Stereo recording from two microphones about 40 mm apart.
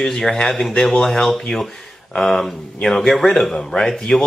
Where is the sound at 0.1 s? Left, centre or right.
Centre.